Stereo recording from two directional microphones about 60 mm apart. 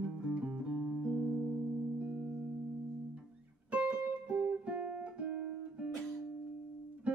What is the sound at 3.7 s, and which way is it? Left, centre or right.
Music, right.